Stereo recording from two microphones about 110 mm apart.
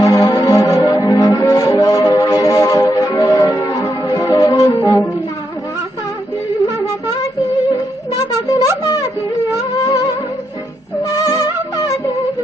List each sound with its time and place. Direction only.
0.0 s music: 35° left (ahead or behind)
4.7 s wind instrument: 25° left (ahead or behind)
8.5 s wind instrument: 35° left (ahead or behind)
11.0 s music: 35° left (ahead or behind)